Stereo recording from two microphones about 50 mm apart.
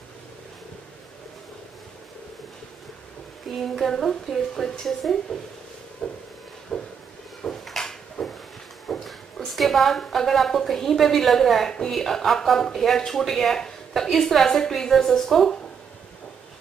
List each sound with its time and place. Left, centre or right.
3.5 s speech: centre
6.0 s speech: centre
6.7 s a sound: centre
8.8 s a woman's voice: centre